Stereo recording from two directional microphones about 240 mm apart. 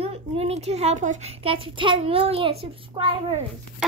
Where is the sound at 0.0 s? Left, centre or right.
Right.